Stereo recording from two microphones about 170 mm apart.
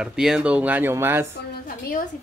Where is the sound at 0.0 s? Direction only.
5° right (ahead or behind).